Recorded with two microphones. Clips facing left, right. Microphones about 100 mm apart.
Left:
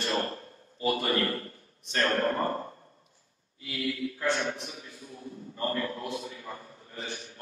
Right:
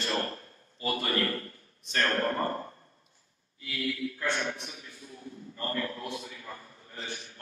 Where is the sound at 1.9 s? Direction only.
25° left (ahead or behind).